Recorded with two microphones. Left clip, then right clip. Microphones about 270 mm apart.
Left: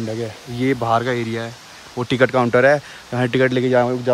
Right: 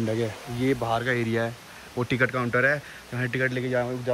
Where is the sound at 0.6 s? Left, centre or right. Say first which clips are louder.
Left 7 dB; left.